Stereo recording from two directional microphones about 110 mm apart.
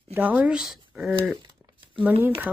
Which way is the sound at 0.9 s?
10° right (ahead or behind).